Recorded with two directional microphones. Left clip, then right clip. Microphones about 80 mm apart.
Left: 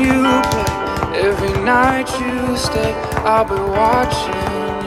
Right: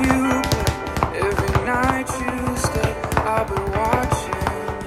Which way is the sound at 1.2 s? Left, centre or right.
Centre.